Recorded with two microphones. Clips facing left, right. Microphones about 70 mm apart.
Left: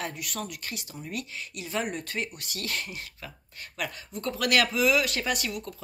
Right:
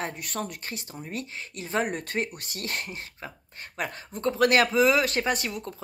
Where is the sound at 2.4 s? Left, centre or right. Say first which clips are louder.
Right 1 dB; right.